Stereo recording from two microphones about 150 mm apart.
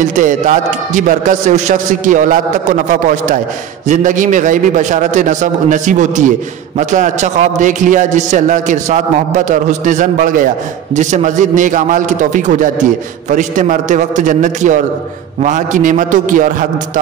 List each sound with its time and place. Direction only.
0.0 s a man's voice: 55° right (ahead or behind)